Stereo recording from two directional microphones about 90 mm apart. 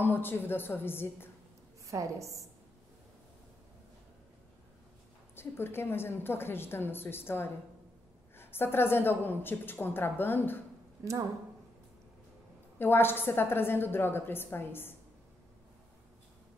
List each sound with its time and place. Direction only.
0.0 s a woman's voice: 25° left (ahead or behind)
1.9 s a woman's voice: 35° right (ahead or behind)
5.3 s a woman's voice: 25° left (ahead or behind)
12.7 s a woman's voice: 25° left (ahead or behind)